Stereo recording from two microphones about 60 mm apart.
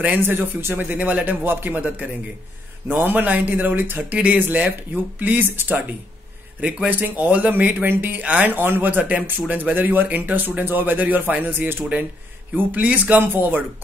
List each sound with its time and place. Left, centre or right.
0.0 s speech: right
0.7 s speech: right
4.1 s speech: right
6.9 s speech: right
8.5 s speech: right